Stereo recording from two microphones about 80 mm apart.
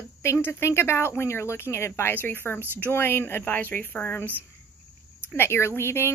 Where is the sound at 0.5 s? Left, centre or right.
Left.